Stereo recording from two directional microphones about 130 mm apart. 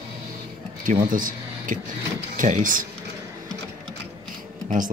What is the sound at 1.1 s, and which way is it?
Speech, 90° right.